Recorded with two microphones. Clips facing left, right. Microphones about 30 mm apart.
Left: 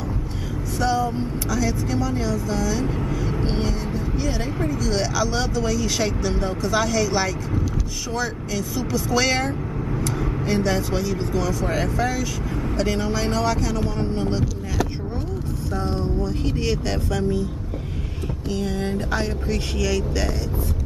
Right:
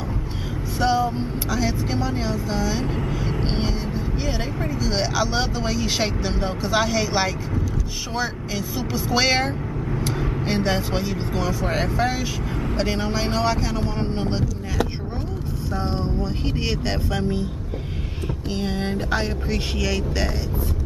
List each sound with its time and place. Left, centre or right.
0.7 s speech: right
3.0 s vehicle: centre
4.6 s speech: right
15.7 s speech: right
18.5 s speech: right